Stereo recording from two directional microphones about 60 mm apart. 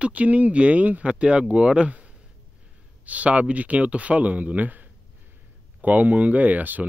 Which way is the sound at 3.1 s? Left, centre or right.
Right.